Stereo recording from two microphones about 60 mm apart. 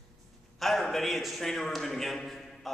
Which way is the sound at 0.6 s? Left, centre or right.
Centre.